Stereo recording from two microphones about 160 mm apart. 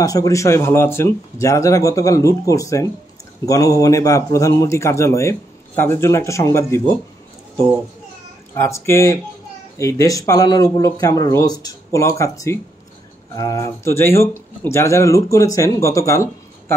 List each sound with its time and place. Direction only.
0.0 s speech: 20° left (ahead or behind)
8.6 s speech: 15° left (ahead or behind)